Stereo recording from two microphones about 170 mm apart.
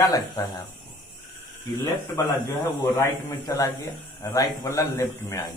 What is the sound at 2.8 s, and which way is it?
A man's voice, 20° left (ahead or behind).